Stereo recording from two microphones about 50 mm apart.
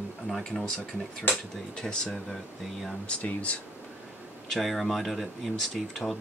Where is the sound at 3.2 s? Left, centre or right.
Left.